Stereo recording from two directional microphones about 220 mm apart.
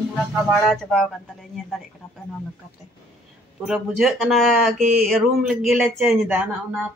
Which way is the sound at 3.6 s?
Centre (ahead or behind).